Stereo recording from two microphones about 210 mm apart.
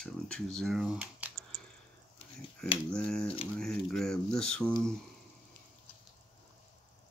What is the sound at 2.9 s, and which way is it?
Speech, 5° left (ahead or behind).